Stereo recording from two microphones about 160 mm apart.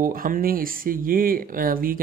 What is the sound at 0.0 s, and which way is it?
Speech, 60° right (ahead or behind).